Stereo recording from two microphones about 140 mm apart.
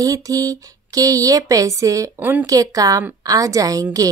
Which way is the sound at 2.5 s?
25° right (ahead or behind).